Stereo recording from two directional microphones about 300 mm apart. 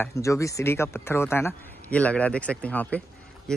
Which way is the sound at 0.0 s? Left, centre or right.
Centre.